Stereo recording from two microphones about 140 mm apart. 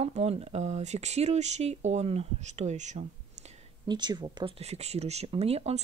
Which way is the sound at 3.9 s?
30° right (ahead or behind).